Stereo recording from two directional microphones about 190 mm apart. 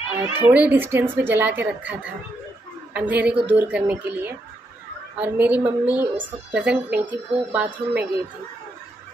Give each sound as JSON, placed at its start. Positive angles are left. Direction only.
{"t": 0.1, "sound": "a woman's voice", "side_deg": -10}